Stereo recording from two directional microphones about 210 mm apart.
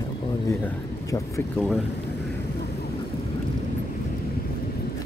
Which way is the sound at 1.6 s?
Centre (ahead or behind).